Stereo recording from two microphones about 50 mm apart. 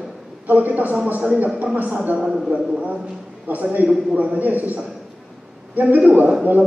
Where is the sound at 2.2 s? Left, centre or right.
Centre.